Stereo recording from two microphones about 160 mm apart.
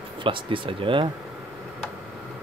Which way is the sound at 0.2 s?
35° right (ahead or behind).